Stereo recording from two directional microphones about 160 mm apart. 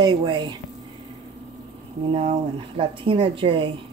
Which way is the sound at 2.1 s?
40° right (ahead or behind).